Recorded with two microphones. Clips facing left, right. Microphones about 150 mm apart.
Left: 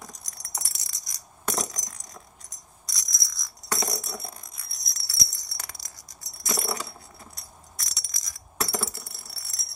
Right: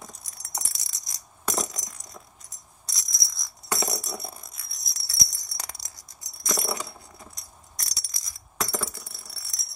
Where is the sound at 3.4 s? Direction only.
Centre (ahead or behind).